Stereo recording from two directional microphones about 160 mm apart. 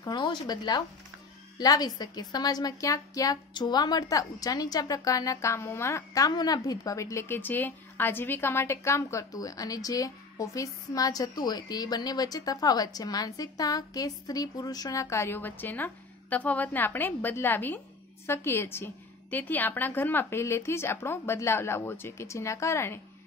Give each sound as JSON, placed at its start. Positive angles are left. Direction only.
{"t": 0.0, "sound": "a woman's voice", "side_deg": 25}